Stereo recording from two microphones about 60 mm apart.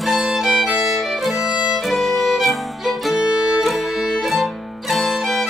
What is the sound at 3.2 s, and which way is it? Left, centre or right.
Music, centre.